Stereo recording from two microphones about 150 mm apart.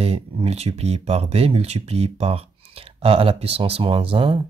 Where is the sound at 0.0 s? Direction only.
40° right (ahead or behind).